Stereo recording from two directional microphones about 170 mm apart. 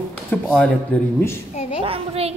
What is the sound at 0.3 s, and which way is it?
Speech, 5° left (ahead or behind).